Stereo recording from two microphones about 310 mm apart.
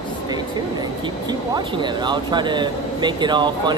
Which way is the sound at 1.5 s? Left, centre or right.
Centre.